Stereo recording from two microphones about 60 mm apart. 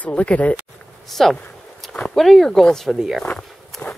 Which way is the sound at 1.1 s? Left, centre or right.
Centre.